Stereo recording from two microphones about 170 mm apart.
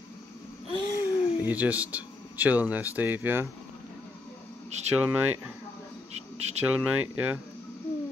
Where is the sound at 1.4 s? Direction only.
10° right (ahead or behind).